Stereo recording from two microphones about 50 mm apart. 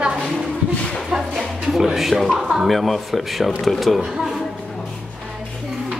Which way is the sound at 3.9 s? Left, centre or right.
Centre.